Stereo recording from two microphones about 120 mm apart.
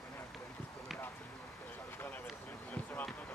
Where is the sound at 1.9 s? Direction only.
15° left (ahead or behind).